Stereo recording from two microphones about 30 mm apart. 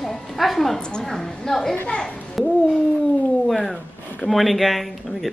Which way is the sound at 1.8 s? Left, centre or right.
Left.